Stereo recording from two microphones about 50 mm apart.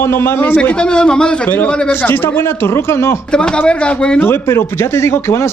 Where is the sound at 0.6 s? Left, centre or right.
Centre.